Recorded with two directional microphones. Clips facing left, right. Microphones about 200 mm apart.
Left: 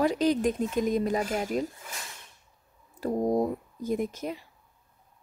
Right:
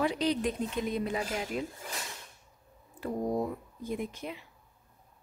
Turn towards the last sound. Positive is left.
turn(degrees=40)  # may be behind; listen again after turning